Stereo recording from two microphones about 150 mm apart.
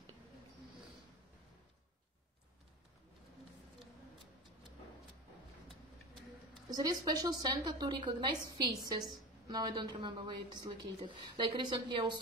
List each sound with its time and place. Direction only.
6.7 s a woman's voice: 25° right (ahead or behind)